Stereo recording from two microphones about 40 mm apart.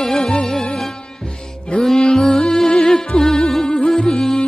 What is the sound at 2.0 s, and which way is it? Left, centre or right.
Music, centre.